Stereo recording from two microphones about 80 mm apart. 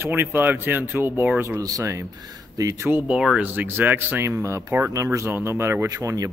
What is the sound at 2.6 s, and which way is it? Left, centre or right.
Speech, right.